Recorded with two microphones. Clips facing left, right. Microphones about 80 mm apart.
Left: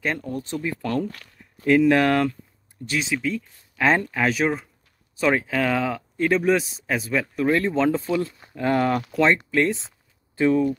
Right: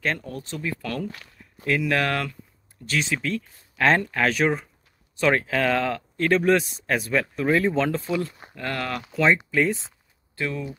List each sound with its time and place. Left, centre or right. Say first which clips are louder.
0.0 s speech: left 1 dB; centre
1.0 s speech: left 1 dB; centre
1.7 s speech: left 6 dB; left
3.0 s speech: left 1 dB; centre
8.5 s speech: left 8 dB; centre
9.0 s speech: left 1 dB; centre
10.3 s speech: left 10 dB; left